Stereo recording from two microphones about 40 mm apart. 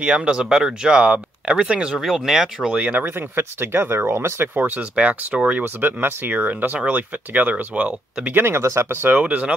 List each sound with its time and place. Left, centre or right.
0.0 s speech: right
2.0 s speech: centre
2.6 s speech: right
3.2 s speech: right
4.6 s speech: right
5.5 s speech: right
6.3 s speech: right
8.4 s speech: right
9.2 s speech: right